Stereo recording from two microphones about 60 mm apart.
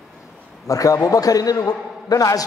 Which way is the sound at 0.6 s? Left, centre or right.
Left.